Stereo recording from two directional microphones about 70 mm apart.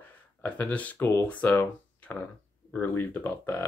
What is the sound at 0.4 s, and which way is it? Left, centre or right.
Speech, left.